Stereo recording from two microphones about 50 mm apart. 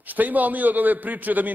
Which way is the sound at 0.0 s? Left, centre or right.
Right.